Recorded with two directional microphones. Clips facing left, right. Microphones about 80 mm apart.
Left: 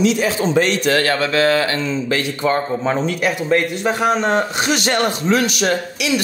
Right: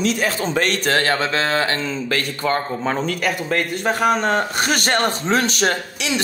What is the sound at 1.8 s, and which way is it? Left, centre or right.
A man's voice, right.